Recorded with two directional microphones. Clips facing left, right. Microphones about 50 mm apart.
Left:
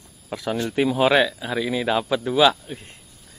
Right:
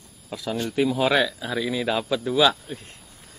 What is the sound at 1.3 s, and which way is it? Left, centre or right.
Speech, centre.